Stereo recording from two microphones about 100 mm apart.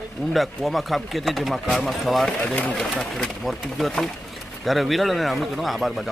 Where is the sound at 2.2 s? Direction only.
10° left (ahead or behind).